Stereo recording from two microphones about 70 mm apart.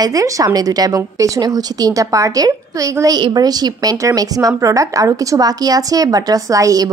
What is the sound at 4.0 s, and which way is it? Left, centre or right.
A woman's voice, right.